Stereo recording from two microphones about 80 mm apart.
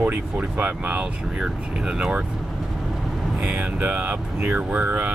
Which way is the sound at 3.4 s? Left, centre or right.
Centre.